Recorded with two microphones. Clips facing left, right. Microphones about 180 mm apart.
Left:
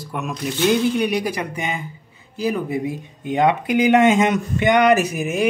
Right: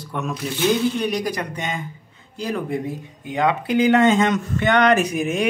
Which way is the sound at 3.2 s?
20° left (ahead or behind).